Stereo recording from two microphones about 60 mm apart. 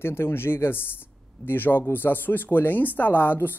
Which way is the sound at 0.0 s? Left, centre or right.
Left.